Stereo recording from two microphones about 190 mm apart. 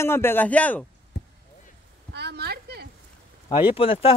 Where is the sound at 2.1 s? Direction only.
60° right (ahead or behind).